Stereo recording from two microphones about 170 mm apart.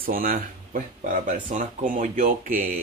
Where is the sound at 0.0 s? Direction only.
55° right (ahead or behind).